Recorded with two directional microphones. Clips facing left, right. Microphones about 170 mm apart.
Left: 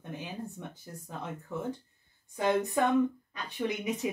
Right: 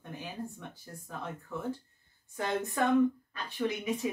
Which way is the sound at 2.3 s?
15° left (ahead or behind).